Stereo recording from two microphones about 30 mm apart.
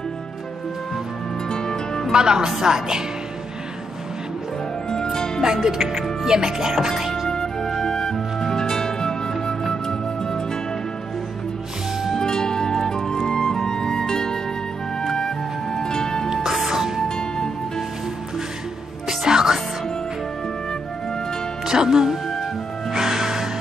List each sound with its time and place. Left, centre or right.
1.5 s music: left
2.1 s speech: right
4.8 s music: left
5.4 s speech: centre
5.8 s speech: centre
6.2 s speech: right
7.0 s music: centre
7.2 s music: centre
12.2 s music: left
16.7 s music: centre
17.1 s music: left
19.0 s music: centre
21.6 s music: centre